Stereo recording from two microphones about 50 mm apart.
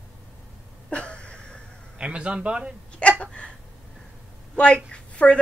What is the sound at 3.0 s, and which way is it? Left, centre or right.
Hiccup, left.